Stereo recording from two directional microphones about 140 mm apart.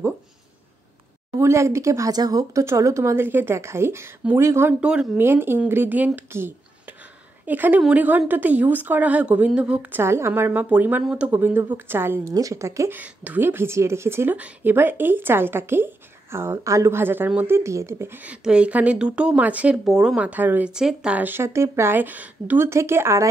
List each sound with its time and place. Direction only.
1.4 s speech: 20° right (ahead or behind)
4.7 s a woman's voice: 5° right (ahead or behind)